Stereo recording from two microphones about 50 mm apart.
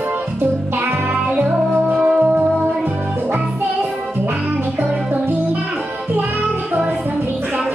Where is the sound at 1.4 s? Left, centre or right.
Right.